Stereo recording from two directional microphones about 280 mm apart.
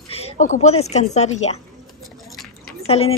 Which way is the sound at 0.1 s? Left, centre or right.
Left.